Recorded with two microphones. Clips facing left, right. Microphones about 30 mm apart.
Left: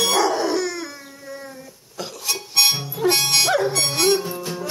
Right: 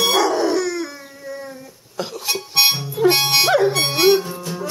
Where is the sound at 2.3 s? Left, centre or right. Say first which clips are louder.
Right 2 dB; centre.